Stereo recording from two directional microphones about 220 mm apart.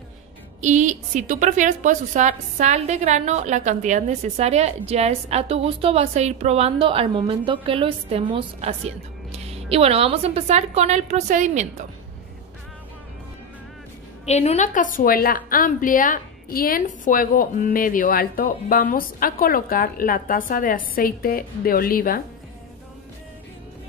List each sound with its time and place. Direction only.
0.6 s a woman's voice: 35° right (ahead or behind)
14.2 s a woman's voice: 30° left (ahead or behind)